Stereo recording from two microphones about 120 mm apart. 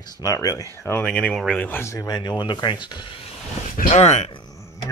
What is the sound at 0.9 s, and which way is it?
Speech, 10° left (ahead or behind).